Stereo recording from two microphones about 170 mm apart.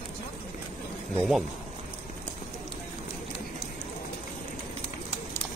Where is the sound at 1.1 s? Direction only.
Centre (ahead or behind).